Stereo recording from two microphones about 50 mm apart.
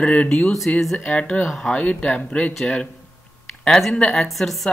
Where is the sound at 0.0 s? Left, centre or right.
Left.